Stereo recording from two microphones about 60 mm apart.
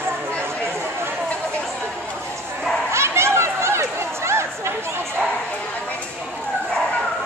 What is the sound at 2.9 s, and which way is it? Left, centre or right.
Chatter, right.